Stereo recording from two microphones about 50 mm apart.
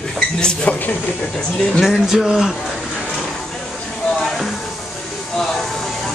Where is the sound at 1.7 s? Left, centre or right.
Centre.